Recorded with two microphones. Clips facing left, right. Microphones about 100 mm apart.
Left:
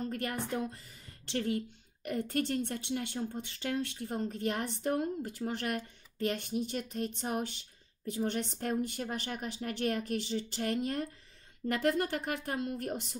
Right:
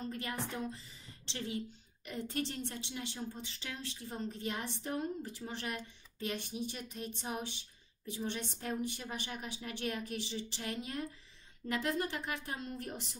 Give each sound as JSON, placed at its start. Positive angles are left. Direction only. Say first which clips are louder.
{"t": 0.0, "sound": "a woman's voice", "louder": "left 4 dB", "side_deg": 55}